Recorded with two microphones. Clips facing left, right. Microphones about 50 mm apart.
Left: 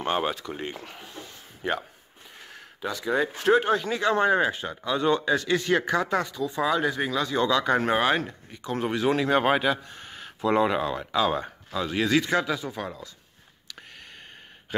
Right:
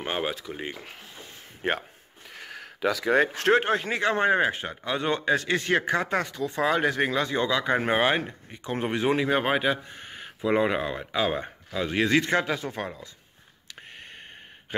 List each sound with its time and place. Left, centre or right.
0.0 s speech: centre
1.6 s speech: right
2.2 s a sound: right
3.5 s speech: right
7.4 s speech: centre
9.1 s speech: centre
9.7 s a sound: right
10.4 s speech: centre; by 12.8 s right
12.8 s speech: right
13.7 s a sound: right